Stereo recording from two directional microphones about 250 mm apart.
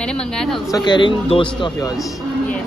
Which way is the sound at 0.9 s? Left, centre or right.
Centre.